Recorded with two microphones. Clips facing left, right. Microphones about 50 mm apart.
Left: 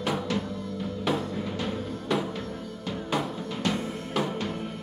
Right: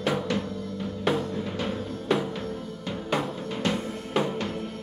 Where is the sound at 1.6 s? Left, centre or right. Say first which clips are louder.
Right 1 dB; centre.